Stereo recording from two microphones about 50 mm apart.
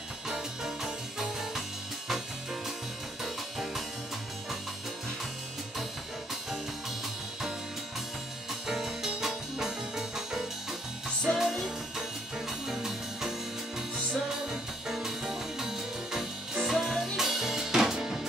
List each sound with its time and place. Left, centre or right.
0.3 s music: centre
8.6 s music: centre
14.5 s music: centre